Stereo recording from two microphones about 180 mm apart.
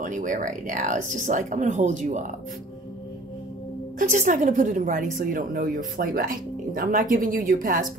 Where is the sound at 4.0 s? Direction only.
45° right (ahead or behind).